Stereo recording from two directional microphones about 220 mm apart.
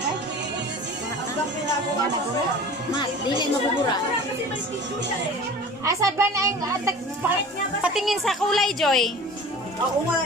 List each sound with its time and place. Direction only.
3.0 s speech: 20° left (ahead or behind)
5.9 s a child's voice: 15° right (ahead or behind)
7.8 s a woman's voice: centre (ahead or behind)